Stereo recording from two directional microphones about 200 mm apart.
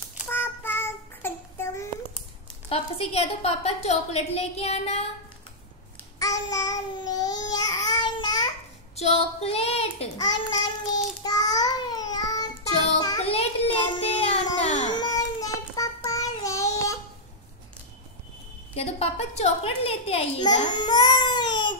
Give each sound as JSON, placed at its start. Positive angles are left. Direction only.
{"t": 0.3, "sound": "child singing", "side_deg": 10}
{"t": 2.7, "sound": "a woman's voice", "side_deg": 30}
{"t": 6.1, "sound": "babbling", "side_deg": 15}
{"t": 8.9, "sound": "a woman's voice", "side_deg": 30}
{"t": 10.1, "sound": "child singing", "side_deg": 20}
{"t": 13.2, "sound": "a sound", "side_deg": 30}
{"t": 14.9, "sound": "child singing", "side_deg": 20}
{"t": 18.8, "sound": "a woman's voice", "side_deg": 30}